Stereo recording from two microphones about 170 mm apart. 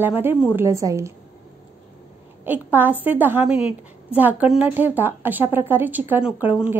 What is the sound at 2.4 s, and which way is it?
A woman's voice, 10° right (ahead or behind).